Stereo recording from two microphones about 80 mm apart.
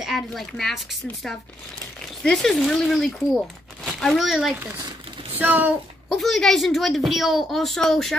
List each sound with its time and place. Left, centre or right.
0.0 s a woman's voice: centre
2.2 s a woman's voice: centre
5.4 s speech: right
6.0 s a woman's voice: centre